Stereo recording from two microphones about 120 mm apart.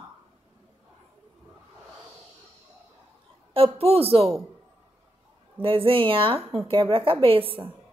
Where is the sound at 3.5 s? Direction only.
50° right (ahead or behind).